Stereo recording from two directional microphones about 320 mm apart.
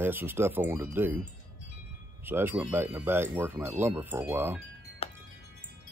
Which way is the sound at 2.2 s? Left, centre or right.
Centre.